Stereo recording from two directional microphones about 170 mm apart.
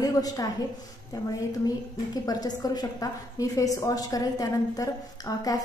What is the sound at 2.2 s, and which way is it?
A woman's voice, 20° left (ahead or behind).